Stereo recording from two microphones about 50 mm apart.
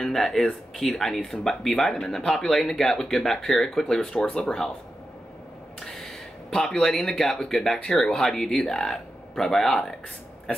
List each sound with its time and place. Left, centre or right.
0.0 s speech: centre
5.8 s speech: centre